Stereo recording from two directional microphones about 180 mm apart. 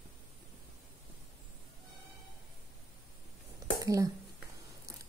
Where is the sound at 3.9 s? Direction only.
20° right (ahead or behind).